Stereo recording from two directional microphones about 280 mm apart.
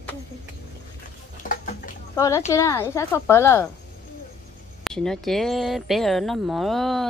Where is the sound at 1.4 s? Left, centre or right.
Left.